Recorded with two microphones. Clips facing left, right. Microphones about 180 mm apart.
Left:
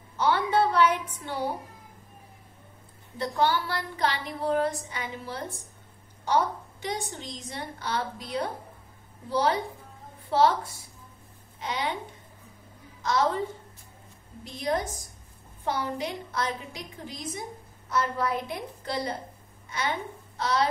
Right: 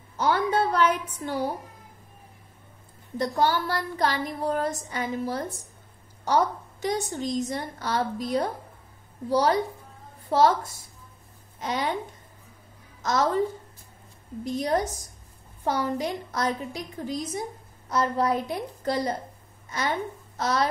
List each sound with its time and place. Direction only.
0.2 s a sound: 45° right (ahead or behind)
3.2 s a woman's voice: 45° right (ahead or behind)
6.8 s a woman's voice: 45° right (ahead or behind)
13.0 s a woman's voice: 45° right (ahead or behind)
14.4 s a woman's voice: 45° right (ahead or behind)
20.3 s a child's voice: 45° right (ahead or behind)